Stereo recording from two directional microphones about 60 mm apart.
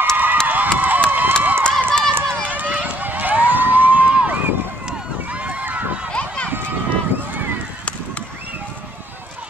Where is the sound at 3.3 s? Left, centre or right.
Right.